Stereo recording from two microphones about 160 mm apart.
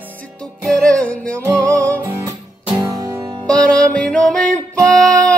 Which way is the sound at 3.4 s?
5° left (ahead or behind).